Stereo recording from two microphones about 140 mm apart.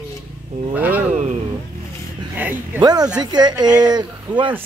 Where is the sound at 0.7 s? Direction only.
10° right (ahead or behind).